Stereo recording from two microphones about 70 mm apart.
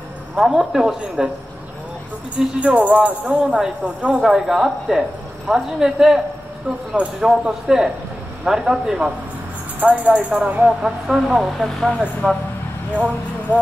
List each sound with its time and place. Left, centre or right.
0.4 s speech: centre
2.3 s speech: centre
3.4 s speech: centre
3.8 s speech: centre
4.2 s speech: centre
9.8 s speech: right; by 11.9 s centre
12.9 s speech: right